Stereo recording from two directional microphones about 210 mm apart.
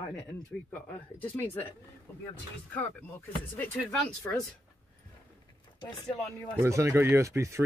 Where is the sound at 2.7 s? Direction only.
10° left (ahead or behind).